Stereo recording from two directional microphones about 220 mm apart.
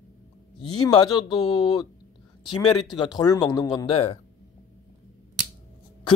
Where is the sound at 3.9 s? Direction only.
30° left (ahead or behind).